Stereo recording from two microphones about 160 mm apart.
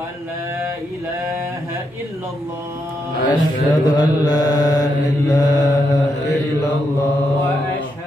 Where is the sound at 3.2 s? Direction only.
25° left (ahead or behind).